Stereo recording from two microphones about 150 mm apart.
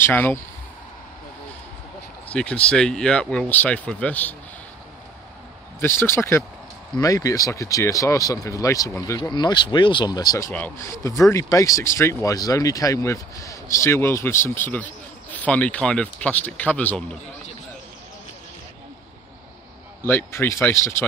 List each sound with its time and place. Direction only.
0.0 s speech: 15° left (ahead or behind)
2.2 s speech: 5° left (ahead or behind)
5.8 s speech: 15° left (ahead or behind)
10.5 s speech: 10° left (ahead or behind)
20.0 s speech: 15° left (ahead or behind)